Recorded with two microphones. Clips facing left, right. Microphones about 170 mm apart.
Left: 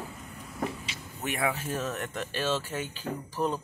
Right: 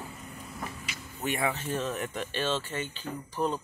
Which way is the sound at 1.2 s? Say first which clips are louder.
Even; centre (ahead or behind).